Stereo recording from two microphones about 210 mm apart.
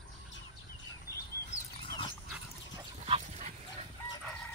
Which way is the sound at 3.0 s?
30° right (ahead or behind).